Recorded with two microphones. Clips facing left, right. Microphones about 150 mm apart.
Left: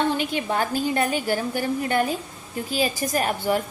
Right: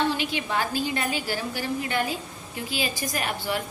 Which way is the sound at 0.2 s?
45° left (ahead or behind).